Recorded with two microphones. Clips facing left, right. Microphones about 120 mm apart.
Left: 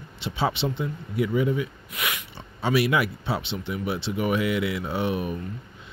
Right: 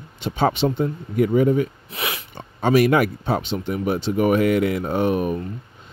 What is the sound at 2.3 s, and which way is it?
Speech, 50° right (ahead or behind).